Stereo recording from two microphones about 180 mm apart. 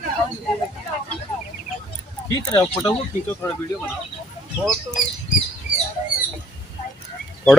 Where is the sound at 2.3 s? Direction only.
20° left (ahead or behind).